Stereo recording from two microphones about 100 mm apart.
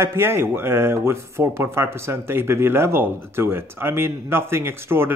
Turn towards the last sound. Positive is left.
turn(degrees=-25)  # may be behind; listen again after turning